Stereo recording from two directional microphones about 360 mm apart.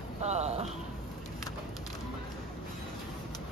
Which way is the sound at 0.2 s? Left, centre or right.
Centre.